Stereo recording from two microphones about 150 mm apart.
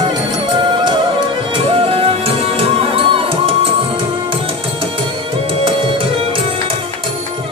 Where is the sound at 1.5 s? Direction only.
40° right (ahead or behind).